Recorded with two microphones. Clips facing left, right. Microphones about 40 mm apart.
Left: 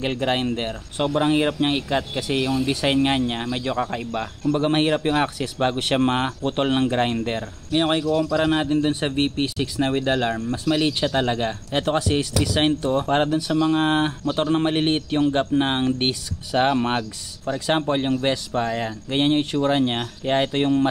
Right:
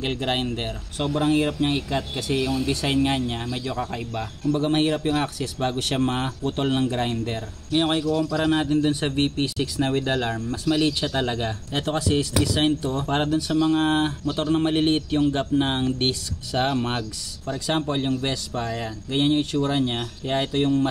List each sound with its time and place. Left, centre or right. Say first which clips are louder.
0.0 s a man's voice: left 3 dB; centre; by 7.4 s left
7.7 s a man's voice: left 2 dB; centre; by 13.0 s left
13.0 s a man's voice: left 3 dB; centre
13.7 s a man's voice: left 1 dB; centre